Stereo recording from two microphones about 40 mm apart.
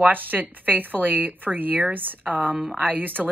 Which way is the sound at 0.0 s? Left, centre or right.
Right.